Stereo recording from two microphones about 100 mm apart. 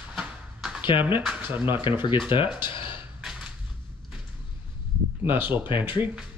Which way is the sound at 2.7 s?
55° left (ahead or behind).